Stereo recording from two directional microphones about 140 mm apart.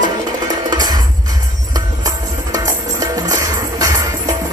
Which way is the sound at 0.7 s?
30° right (ahead or behind).